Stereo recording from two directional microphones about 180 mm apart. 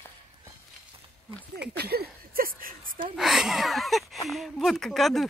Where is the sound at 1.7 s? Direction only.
60° right (ahead or behind).